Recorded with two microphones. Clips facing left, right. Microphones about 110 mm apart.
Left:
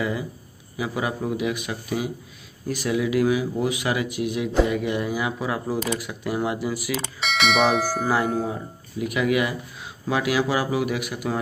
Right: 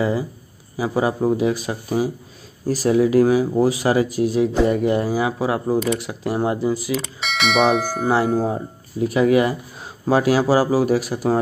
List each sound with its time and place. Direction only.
0.7 s speech: 35° right (ahead or behind)
7.0 s speech: centre (ahead or behind)
8.4 s speech: 35° right (ahead or behind)